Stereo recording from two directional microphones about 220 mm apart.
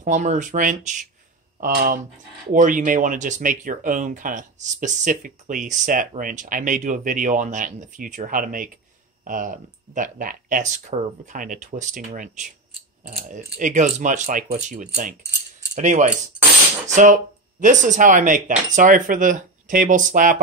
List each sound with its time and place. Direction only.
0.0 s speech: 35° right (ahead or behind)